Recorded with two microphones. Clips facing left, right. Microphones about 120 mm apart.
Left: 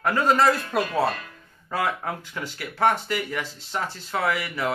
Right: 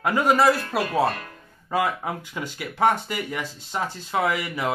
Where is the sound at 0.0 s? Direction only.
15° right (ahead or behind).